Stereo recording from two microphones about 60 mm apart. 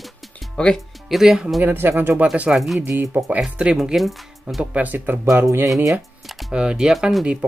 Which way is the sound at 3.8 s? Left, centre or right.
Centre.